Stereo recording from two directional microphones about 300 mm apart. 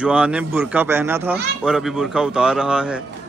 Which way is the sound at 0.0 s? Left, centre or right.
Centre.